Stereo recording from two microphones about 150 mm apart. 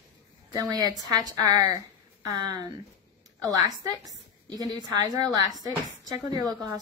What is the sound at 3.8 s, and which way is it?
A woman's voice, 25° right (ahead or behind).